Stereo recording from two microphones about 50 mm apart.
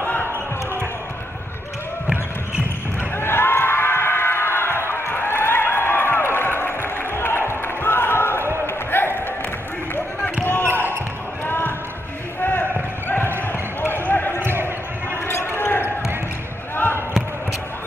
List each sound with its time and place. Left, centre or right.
0.0 s basketball bounce: left
3.2 s a sound: left
8.6 s basketball bounce: left
10.7 s basketball bounce: right
11.4 s basketball bounce: left
14.4 s basketball bounce: right
15.2 s basketball bounce: left